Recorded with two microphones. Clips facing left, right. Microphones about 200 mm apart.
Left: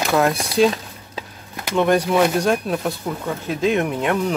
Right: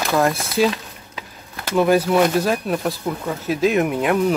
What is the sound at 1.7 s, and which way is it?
Speech, 5° right (ahead or behind).